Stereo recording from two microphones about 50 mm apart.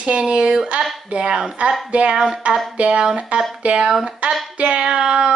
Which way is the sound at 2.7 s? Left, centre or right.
Right.